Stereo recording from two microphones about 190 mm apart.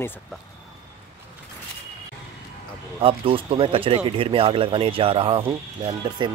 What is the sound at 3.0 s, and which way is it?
Speech, 30° right (ahead or behind).